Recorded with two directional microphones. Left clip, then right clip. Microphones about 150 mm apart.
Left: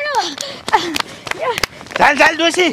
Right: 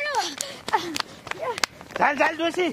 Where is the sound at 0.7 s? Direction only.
35° left (ahead or behind).